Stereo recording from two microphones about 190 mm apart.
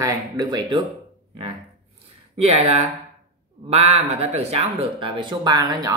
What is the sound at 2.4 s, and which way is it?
Speech, 35° right (ahead or behind).